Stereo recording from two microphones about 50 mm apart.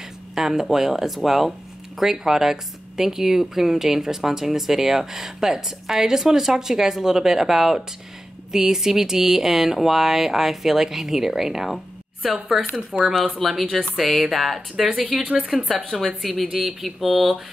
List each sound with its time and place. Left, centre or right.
0.3 s a woman's voice: centre
15.8 s a woman's voice: centre